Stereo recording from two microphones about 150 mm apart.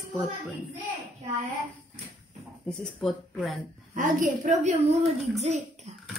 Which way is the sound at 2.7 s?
5° left (ahead or behind).